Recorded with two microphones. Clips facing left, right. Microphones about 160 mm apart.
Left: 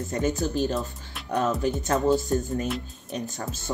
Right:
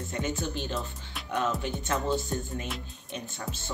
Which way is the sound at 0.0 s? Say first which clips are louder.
Left 6 dB; 40° left (ahead or behind).